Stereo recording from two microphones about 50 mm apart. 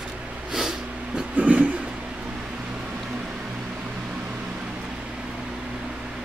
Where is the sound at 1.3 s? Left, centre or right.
Right.